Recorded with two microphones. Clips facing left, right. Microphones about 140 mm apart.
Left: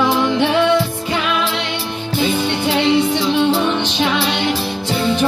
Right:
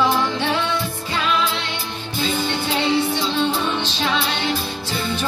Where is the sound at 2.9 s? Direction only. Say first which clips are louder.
Left 5 dB; 15° left (ahead or behind).